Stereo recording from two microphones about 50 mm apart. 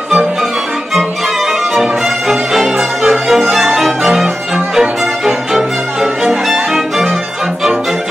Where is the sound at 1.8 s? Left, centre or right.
Centre.